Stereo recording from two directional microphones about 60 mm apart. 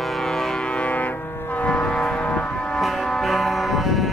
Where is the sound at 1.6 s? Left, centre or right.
Centre.